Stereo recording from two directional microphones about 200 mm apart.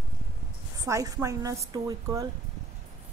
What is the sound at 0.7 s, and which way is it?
A woman's voice, 15° right (ahead or behind).